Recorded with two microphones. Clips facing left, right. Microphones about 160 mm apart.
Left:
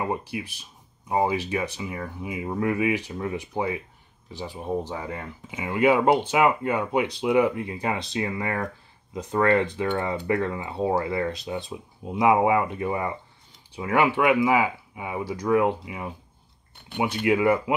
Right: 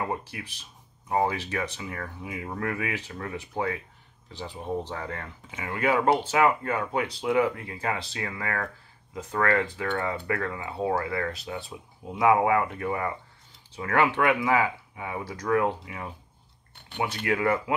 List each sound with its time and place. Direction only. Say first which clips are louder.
0.0 s speech: left 3 dB; 15° left (ahead or behind)